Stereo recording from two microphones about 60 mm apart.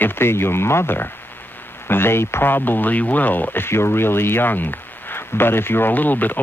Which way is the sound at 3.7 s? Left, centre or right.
Left.